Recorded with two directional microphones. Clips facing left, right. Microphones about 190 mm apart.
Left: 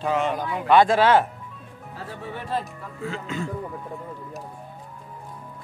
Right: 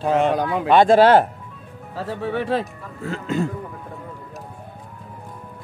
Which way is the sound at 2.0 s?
75° right (ahead or behind).